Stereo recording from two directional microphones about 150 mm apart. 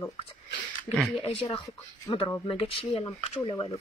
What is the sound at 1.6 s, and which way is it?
Speech, 30° left (ahead or behind).